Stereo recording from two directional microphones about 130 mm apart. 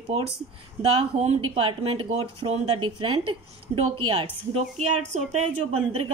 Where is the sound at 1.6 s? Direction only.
40° right (ahead or behind).